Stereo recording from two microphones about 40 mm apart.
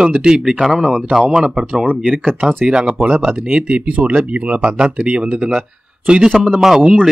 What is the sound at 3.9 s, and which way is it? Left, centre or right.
Speech, right.